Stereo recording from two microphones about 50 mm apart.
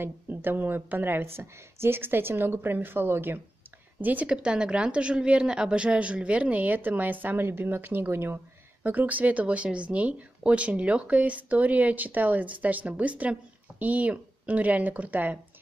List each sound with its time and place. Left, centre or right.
0.0 s a woman's voice: right
1.2 s a woman's voice: right
4.3 s a woman's voice: centre; by 8.4 s right
8.8 s speech: right